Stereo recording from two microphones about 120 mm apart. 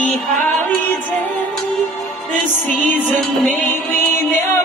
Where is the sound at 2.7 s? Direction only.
15° left (ahead or behind).